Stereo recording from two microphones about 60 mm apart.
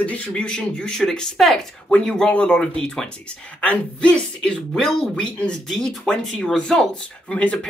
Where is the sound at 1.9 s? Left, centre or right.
Centre.